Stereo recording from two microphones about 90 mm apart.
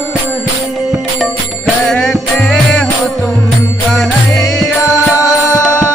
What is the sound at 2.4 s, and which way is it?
Music, 15° left (ahead or behind).